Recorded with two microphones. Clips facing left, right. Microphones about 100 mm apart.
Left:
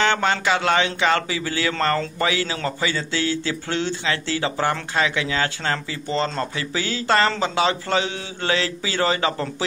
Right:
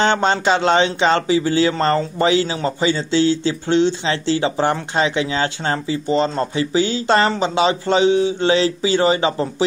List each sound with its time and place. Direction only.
0.0 s a man's voice: 30° right (ahead or behind)